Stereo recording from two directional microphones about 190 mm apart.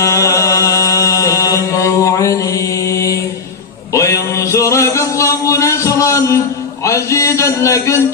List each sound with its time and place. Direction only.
0.0 s mantra: 15° left (ahead or behind)
3.9 s music: 15° left (ahead or behind)